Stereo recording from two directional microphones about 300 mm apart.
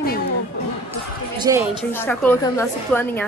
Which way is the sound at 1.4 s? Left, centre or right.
Centre.